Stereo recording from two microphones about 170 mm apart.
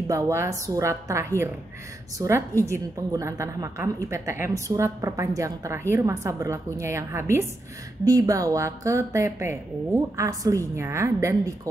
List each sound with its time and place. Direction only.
0.1 s a woman's voice: 15° right (ahead or behind)